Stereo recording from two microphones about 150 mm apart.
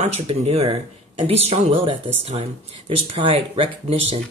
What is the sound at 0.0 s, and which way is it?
Speech, 45° right (ahead or behind).